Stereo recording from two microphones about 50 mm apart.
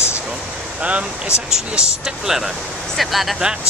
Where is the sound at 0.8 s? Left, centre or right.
Right.